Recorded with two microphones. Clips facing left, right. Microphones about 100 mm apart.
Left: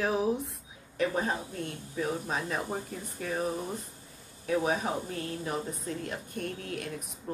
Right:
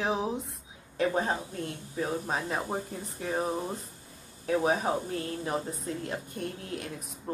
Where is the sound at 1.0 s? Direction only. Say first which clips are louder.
Right 2 dB; 30° right (ahead or behind).